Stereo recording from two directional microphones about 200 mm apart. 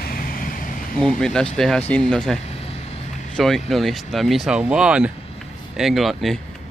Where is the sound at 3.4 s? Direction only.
Centre (ahead or behind).